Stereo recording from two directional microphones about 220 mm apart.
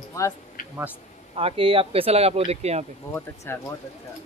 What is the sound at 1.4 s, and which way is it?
Speech, 25° right (ahead or behind).